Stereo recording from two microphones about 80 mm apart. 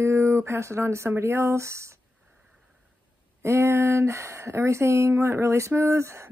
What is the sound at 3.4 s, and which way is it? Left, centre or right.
Speech, right.